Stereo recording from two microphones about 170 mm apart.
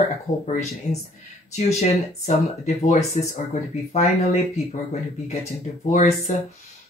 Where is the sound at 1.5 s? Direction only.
40° left (ahead or behind).